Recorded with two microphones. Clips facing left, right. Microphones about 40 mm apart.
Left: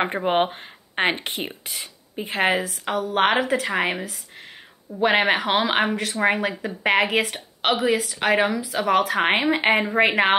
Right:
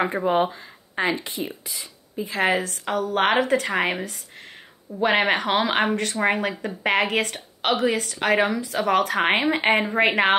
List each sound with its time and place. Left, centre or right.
0.0 s speech: left
2.5 s speech: centre